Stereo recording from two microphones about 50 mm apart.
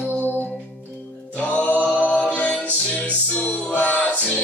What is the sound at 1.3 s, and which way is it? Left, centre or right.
Music, left.